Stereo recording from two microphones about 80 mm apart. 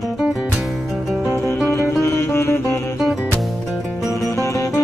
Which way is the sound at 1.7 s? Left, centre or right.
Left.